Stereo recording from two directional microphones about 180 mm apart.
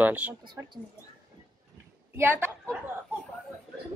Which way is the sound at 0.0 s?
5° right (ahead or behind).